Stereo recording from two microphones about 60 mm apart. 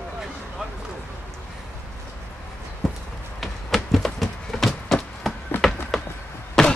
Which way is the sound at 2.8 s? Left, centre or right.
Centre.